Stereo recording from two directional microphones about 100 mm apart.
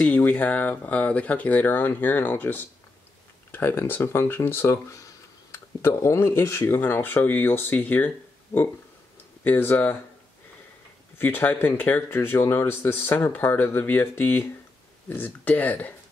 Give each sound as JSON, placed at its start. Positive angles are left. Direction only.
{"t": 0.0, "sound": "speech", "side_deg": 15}
{"t": 8.5, "sound": "speech", "side_deg": 30}
{"t": 11.1, "sound": "speech", "side_deg": 20}